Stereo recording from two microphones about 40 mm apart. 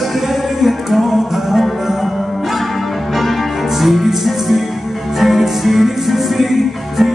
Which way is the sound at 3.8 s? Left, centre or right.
Centre.